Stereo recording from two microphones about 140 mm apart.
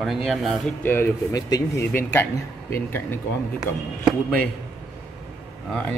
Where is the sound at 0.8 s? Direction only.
15° left (ahead or behind).